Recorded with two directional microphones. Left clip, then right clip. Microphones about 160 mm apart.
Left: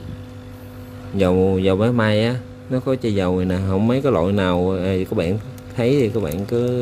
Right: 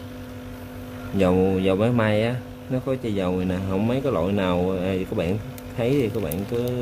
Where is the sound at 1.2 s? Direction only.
20° left (ahead or behind).